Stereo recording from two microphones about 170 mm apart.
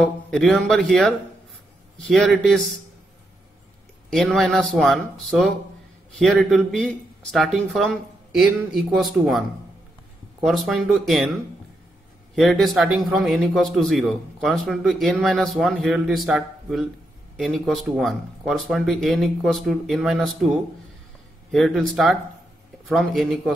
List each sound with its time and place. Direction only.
0.0 s a man's voice: centre (ahead or behind)
4.1 s a man's voice: centre (ahead or behind)
6.1 s a man's voice: centre (ahead or behind)
10.4 s a man's voice: centre (ahead or behind)
12.4 s a man's voice: centre (ahead or behind)
21.5 s a man's voice: centre (ahead or behind)